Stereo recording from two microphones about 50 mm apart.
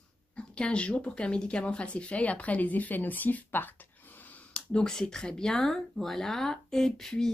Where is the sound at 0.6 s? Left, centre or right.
Left.